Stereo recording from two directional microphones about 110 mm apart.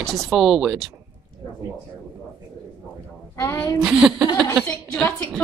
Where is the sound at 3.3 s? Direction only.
30° left (ahead or behind).